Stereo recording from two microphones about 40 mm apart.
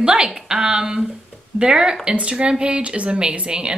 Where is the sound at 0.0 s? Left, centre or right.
Right.